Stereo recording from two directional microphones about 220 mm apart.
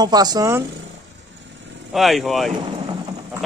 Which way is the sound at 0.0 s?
20° right (ahead or behind).